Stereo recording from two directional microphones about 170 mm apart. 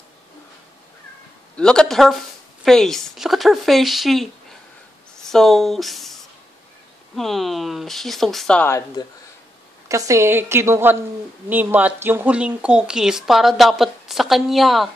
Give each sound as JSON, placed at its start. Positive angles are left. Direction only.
{"t": 1.6, "sound": "speech", "side_deg": 5}
{"t": 9.8, "sound": "a woman's voice", "side_deg": -20}